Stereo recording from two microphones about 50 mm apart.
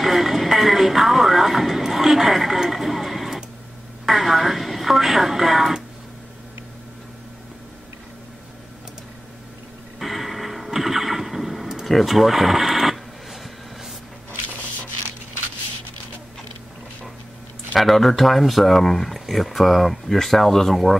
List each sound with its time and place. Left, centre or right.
0.0 s music: centre
4.0 s radio: centre
9.9 s neigh: centre
17.7 s speech: centre